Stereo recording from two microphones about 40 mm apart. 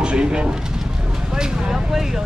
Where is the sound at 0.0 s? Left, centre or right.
Right.